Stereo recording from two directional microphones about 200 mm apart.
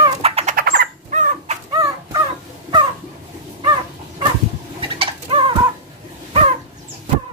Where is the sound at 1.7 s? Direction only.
20° right (ahead or behind).